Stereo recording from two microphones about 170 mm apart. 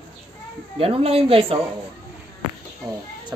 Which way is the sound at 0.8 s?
35° right (ahead or behind).